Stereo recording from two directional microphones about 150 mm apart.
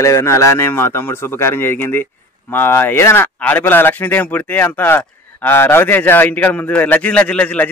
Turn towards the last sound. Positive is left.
turn(degrees=10)  # may be behind; listen again after turning